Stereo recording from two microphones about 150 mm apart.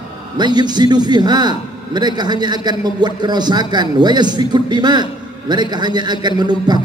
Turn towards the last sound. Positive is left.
turn(degrees=-30)  # may be behind; listen again after turning